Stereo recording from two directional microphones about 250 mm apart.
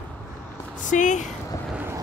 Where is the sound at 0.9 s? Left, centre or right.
Left.